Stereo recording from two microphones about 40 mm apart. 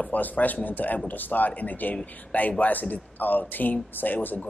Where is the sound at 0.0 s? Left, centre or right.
Left.